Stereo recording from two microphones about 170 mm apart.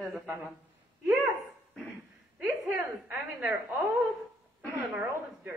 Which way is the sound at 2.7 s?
15° right (ahead or behind).